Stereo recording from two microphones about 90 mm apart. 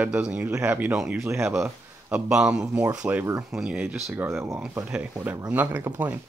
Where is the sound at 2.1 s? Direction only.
10° right (ahead or behind).